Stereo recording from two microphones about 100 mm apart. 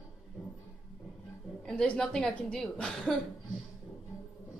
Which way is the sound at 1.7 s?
10° left (ahead or behind).